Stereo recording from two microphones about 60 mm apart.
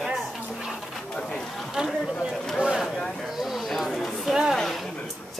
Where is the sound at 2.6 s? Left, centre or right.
Centre.